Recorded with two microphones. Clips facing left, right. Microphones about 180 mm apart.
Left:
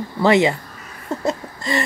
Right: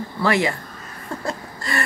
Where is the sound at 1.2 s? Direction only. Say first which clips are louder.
Left 7 dB; 20° left (ahead or behind).